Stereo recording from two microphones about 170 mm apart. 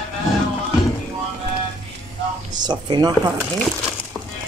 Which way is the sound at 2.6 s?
25° right (ahead or behind).